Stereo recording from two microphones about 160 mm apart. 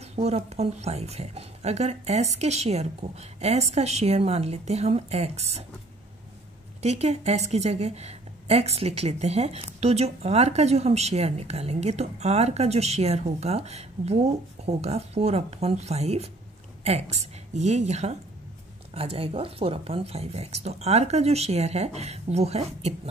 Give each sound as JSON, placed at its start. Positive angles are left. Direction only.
{"t": 0.1, "sound": "speech", "side_deg": -40}
{"t": 6.8, "sound": "speech", "side_deg": -45}